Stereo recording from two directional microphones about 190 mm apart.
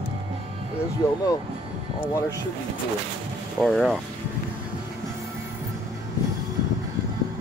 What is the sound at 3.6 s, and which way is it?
Speech, 5° left (ahead or behind).